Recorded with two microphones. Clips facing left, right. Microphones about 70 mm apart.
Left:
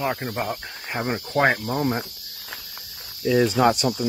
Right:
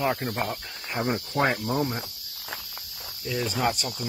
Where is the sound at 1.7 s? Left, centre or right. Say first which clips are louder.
Left 3 dB; left.